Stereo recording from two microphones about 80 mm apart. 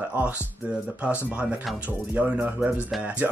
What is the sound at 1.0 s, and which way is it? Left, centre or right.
Speech, centre.